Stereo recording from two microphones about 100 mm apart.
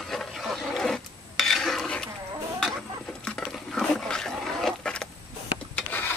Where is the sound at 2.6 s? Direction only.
5° left (ahead or behind).